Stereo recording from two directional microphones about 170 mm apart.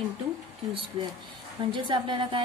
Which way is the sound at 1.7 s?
30° right (ahead or behind).